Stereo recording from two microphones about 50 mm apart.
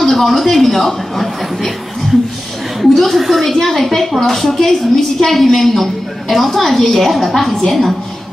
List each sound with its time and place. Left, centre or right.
0.0 s a woman's voice: centre